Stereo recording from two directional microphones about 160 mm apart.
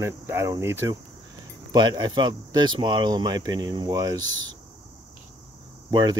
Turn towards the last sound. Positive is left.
turn(degrees=-25)  # may be behind; listen again after turning